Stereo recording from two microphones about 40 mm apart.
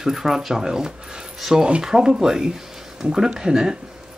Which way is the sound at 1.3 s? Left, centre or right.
Centre.